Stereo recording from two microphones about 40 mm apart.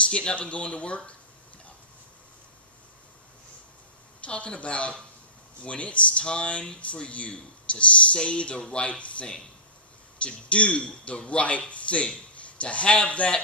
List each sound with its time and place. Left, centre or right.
0.0 s speech: left
4.2 s speech: left